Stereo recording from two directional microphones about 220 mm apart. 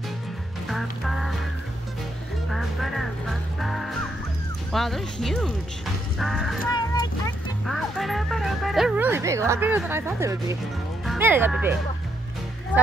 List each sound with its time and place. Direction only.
0.7 s music: centre (ahead or behind)
2.5 s music: centre (ahead or behind)
4.7 s speech: centre (ahead or behind)
6.7 s a sound: 20° left (ahead or behind)
7.6 s music: centre (ahead or behind)
11.1 s speech: 10° right (ahead or behind)